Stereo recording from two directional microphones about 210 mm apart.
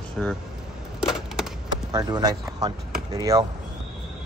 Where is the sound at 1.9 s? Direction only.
20° right (ahead or behind).